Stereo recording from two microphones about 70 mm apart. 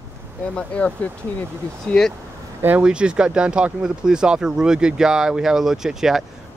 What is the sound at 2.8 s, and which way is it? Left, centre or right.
Speech, centre.